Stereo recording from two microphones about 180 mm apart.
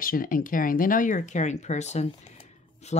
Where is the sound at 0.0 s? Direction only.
50° left (ahead or behind).